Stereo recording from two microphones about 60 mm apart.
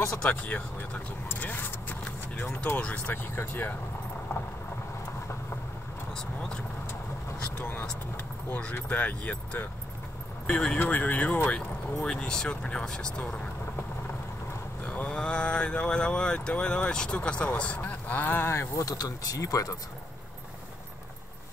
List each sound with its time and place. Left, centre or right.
0.3 s speech: left
3.3 s speech: left
8.5 s speech: left
14.9 s speech: centre
18.5 s speech: left
18.9 s speech: left